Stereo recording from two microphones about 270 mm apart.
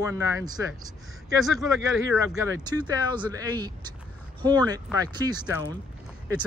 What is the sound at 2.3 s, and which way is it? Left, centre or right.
Speech, centre.